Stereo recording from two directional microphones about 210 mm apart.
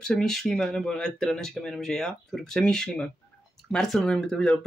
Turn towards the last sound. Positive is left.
turn(degrees=5)  # may be behind; listen again after turning